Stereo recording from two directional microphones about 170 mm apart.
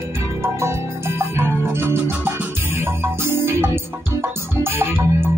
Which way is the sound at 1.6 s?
15° right (ahead or behind).